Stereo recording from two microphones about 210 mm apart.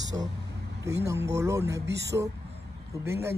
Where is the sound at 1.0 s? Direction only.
15° right (ahead or behind).